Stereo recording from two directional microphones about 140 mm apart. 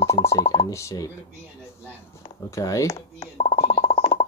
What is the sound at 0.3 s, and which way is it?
Speech, 25° left (ahead or behind).